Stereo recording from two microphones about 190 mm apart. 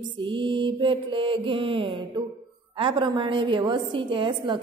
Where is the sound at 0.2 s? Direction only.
25° right (ahead or behind).